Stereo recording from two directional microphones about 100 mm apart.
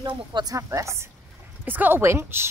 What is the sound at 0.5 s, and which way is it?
Speech, 30° right (ahead or behind).